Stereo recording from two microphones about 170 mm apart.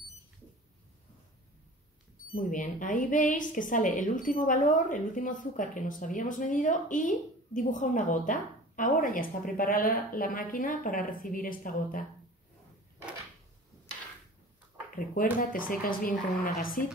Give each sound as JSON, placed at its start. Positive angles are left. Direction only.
{"t": 2.5, "sound": "a woman's voice", "side_deg": 50}
{"t": 15.1, "sound": "a woman's voice", "side_deg": 55}